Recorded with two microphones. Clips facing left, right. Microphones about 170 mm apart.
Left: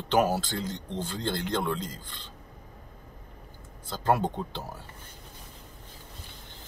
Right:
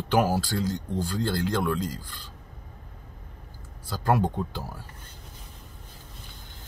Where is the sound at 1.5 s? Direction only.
25° left (ahead or behind).